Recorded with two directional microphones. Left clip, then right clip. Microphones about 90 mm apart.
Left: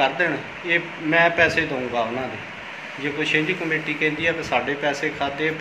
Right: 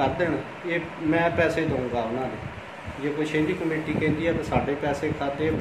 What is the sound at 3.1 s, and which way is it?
A man's voice, 30° right (ahead or behind).